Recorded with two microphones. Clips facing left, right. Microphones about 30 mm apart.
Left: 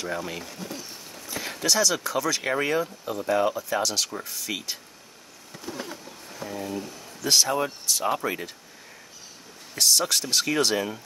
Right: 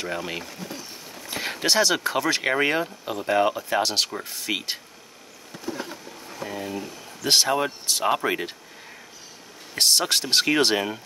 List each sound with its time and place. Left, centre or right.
0.0 s speech: right
0.5 s a sound: centre
1.2 s speech: right
5.5 s a sound: centre
7.2 s speech: right
9.8 s speech: right